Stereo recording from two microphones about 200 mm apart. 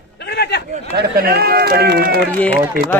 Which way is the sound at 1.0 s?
50° right (ahead or behind).